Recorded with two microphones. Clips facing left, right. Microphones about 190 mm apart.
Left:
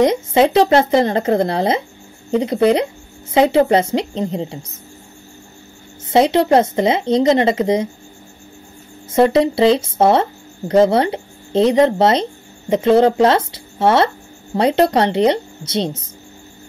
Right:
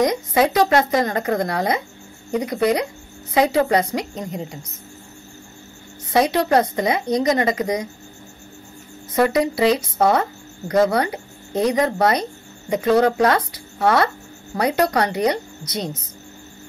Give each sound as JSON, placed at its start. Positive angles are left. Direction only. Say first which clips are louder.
{"t": 0.0, "sound": "speech", "louder": "left 4 dB", "side_deg": 25}
{"t": 6.0, "sound": "speech", "louder": "left 5 dB", "side_deg": 25}
{"t": 9.1, "sound": "speech", "louder": "left 5 dB", "side_deg": 25}